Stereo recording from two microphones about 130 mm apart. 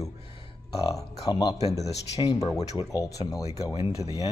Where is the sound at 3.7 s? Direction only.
50° left (ahead or behind).